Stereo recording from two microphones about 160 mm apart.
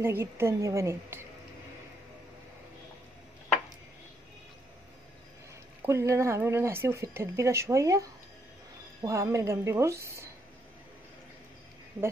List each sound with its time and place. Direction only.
0.0 s speech: 15° right (ahead or behind)
5.9 s a woman's voice: 20° right (ahead or behind)